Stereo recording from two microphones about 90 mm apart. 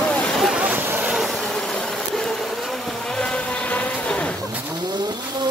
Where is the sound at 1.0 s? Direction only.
5° right (ahead or behind); by 4.4 s 10° left (ahead or behind).